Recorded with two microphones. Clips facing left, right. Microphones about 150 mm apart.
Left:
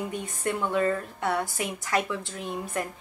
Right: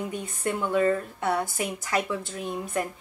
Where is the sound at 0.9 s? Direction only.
20° right (ahead or behind).